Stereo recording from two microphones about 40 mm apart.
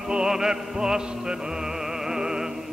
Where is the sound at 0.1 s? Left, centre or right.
Centre.